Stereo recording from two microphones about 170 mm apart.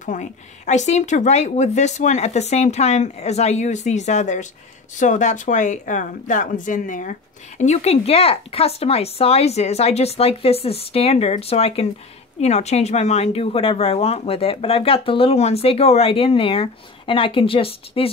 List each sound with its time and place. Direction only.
0.0 s speech: 45° left (ahead or behind)